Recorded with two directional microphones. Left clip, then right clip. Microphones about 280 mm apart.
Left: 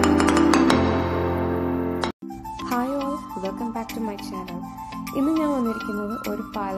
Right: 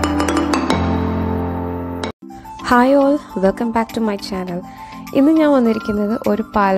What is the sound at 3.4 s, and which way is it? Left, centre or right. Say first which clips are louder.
Speech: right 12 dB; right.